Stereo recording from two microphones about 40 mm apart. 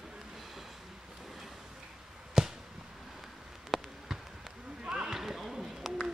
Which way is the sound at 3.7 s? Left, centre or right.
Centre.